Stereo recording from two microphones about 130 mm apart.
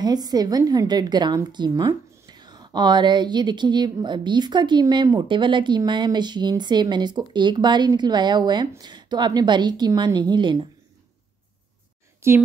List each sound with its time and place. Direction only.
0.0 s a woman's voice: 30° right (ahead or behind)
12.2 s a woman's voice: 20° right (ahead or behind)